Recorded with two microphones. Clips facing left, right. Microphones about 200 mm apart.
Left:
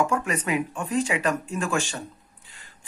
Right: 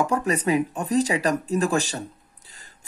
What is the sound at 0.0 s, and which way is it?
Speech, 35° right (ahead or behind).